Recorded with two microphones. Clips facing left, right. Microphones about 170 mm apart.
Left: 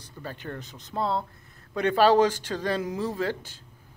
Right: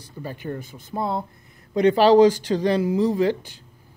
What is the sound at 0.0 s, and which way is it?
Speech, 10° right (ahead or behind).